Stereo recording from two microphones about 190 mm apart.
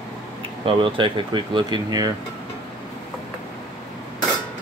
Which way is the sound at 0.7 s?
25° right (ahead or behind).